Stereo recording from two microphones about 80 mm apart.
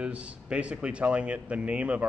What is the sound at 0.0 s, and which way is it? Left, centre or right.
A man's voice, centre.